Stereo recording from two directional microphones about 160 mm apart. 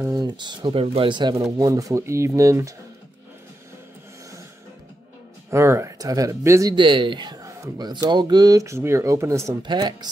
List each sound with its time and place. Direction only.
0.0 s speech: 25° right (ahead or behind)
5.5 s speech: 15° right (ahead or behind)
9.6 s speech: 30° right (ahead or behind)